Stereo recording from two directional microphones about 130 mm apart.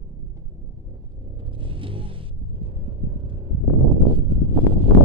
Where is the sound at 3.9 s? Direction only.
40° right (ahead or behind).